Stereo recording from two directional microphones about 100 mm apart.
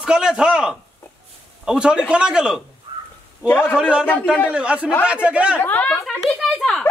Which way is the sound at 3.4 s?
20° left (ahead or behind).